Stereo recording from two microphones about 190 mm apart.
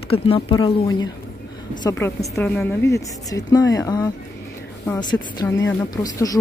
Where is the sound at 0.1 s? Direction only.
30° left (ahead or behind).